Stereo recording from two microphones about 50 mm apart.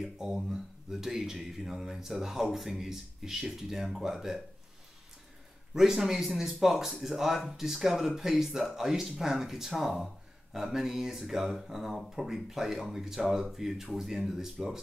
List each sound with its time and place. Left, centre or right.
0.0 s speech: centre
5.8 s speech: centre